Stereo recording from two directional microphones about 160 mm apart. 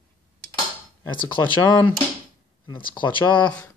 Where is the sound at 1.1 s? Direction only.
30° left (ahead or behind).